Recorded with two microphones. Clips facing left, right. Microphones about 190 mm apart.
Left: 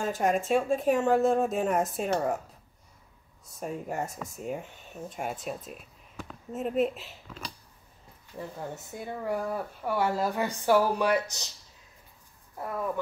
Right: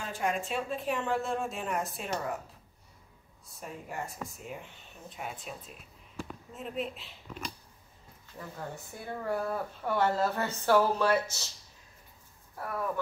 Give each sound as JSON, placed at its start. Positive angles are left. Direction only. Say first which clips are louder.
{"t": 0.0, "sound": "speech", "louder": "left 6 dB", "side_deg": 45}
{"t": 3.5, "sound": "speech", "louder": "left 7 dB", "side_deg": 45}
{"t": 8.4, "sound": "speech", "louder": "left 4 dB", "side_deg": 20}
{"t": 12.5, "sound": "speech", "louder": "left 2 dB", "side_deg": 20}